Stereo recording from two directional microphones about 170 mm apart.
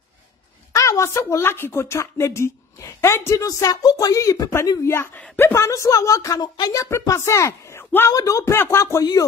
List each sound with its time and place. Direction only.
0.7 s a woman's voice: 15° left (ahead or behind)